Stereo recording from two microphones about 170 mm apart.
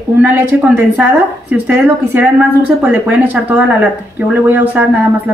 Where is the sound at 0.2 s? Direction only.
10° right (ahead or behind).